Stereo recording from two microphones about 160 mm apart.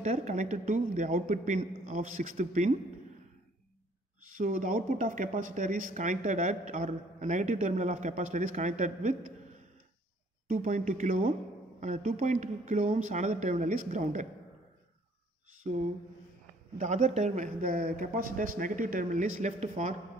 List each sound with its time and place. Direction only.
0.0 s speech: 45° right (ahead or behind)
4.3 s speech: 55° right (ahead or behind)
15.7 s speech: 50° right (ahead or behind)